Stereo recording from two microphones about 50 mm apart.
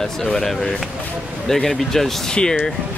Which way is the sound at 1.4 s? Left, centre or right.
Centre.